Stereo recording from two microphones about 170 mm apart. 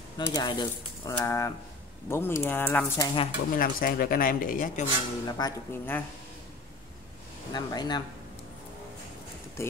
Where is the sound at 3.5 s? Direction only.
55° left (ahead or behind).